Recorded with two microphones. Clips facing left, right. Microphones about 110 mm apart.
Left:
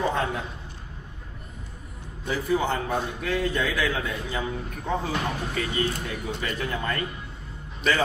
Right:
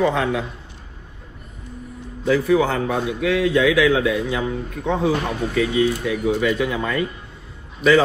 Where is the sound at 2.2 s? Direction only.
90° right.